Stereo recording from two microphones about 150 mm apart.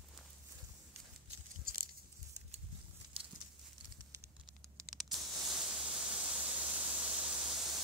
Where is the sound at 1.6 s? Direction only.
75° right (ahead or behind).